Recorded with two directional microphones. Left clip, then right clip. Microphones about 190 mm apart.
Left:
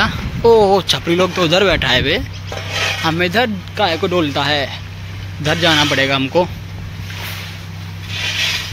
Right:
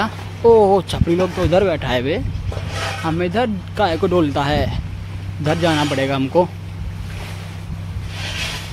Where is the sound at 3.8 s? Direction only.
25° right (ahead or behind).